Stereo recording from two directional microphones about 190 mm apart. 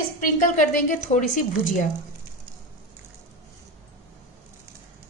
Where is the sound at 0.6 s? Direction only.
45° left (ahead or behind).